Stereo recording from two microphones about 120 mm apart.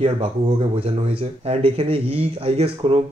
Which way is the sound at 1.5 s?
50° right (ahead or behind).